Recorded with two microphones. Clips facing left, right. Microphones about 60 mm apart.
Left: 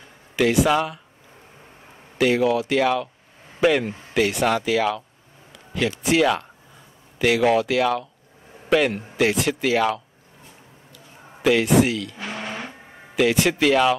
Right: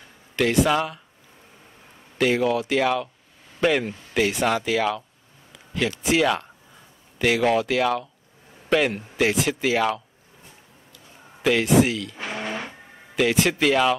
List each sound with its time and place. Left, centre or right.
0.4 s speech: centre
2.1 s speech: centre
11.4 s speech: centre
12.2 s a sound: right
13.1 s speech: centre